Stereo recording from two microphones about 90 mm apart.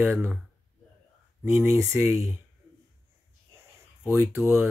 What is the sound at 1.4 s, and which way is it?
Speech, 35° right (ahead or behind).